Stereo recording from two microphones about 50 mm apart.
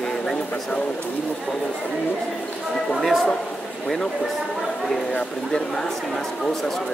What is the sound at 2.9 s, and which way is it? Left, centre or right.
Speech, centre.